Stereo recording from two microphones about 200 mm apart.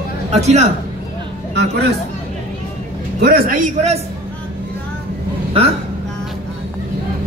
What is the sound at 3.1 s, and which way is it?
Speech, 50° right (ahead or behind).